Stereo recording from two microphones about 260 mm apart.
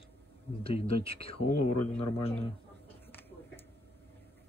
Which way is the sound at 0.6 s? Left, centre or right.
Left.